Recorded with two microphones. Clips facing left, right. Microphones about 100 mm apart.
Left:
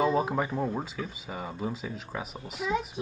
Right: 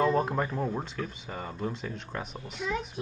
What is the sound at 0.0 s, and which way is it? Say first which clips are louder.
Speech: even; 5° left (ahead or behind).